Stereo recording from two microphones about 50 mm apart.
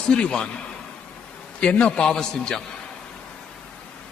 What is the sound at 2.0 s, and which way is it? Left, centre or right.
Speech, centre.